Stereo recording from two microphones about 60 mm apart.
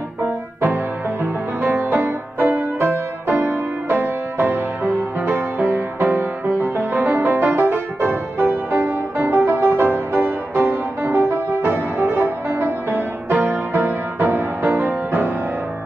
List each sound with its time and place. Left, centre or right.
0.6 s music: right